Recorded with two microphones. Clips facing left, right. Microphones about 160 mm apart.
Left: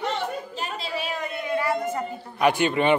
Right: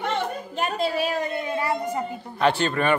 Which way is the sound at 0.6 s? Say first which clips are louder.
Right 11 dB; 50° right (ahead or behind).